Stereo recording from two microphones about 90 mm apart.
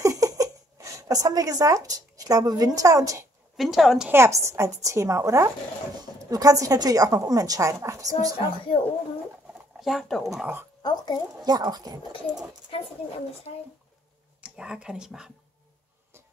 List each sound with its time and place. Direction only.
0.0 s a sound: 40° right (ahead or behind)
3.5 s speech: centre (ahead or behind)
4.1 s a woman's voice: 30° right (ahead or behind)
8.7 s speech: 90° left
9.8 s speech: centre (ahead or behind)
10.8 s speech: 55° left (ahead or behind)
11.4 s speech: 50° right (ahead or behind)
14.4 s speech: 10° right (ahead or behind)